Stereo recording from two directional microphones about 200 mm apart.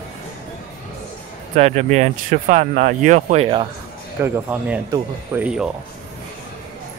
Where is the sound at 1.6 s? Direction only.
35° right (ahead or behind).